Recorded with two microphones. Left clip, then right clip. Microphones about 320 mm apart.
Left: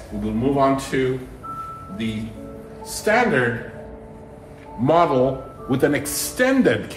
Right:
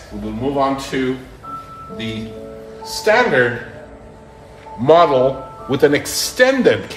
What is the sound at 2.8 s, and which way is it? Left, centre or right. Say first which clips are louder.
Speech: right 5 dB; right.